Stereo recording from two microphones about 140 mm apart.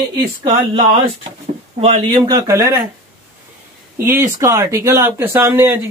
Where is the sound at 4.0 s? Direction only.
20° right (ahead or behind).